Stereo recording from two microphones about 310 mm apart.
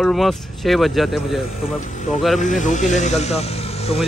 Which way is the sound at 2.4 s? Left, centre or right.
Left.